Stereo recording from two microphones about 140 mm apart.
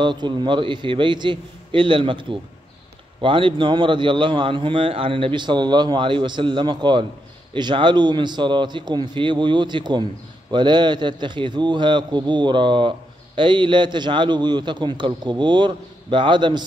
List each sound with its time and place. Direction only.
0.0 s a man's voice: 35° right (ahead or behind)